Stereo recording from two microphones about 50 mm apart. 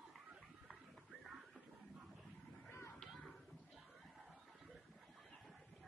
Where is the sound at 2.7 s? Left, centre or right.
Left.